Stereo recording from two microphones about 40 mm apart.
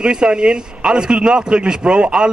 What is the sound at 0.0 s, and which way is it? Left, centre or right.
A man's voice, right.